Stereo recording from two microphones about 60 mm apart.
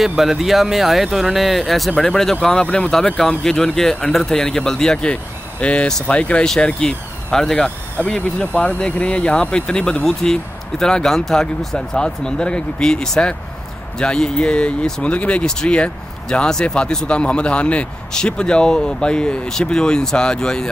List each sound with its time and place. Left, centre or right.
0.2 s speech: centre
2.6 s speech: left
3.2 s speech: centre